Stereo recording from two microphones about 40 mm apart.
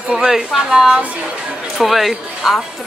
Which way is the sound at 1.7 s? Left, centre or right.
Centre.